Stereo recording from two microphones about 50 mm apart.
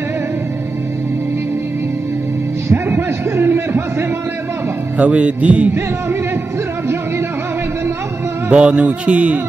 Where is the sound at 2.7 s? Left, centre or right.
Right.